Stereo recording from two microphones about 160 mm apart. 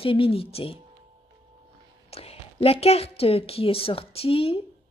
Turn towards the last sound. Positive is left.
turn(degrees=35)  # may be behind; listen again after turning